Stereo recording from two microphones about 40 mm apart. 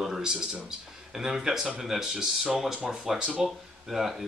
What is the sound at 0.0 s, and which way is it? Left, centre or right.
Speech, centre.